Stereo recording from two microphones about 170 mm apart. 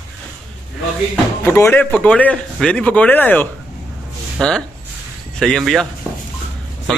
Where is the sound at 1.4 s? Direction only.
15° left (ahead or behind).